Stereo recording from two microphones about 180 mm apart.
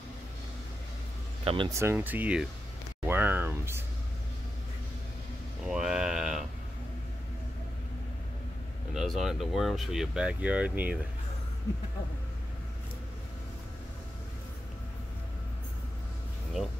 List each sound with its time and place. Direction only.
1.4 s speech: 30° right (ahead or behind)
1.7 s speech: 15° right (ahead or behind)
5.6 s a sound: 5° right (ahead or behind)
8.9 s speech: centre (ahead or behind)